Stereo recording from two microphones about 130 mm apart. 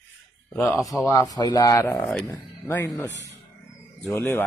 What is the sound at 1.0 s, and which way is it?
Speech, 25° left (ahead or behind).